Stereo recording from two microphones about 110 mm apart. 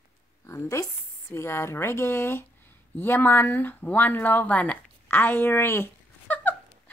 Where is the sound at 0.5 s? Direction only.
25° left (ahead or behind).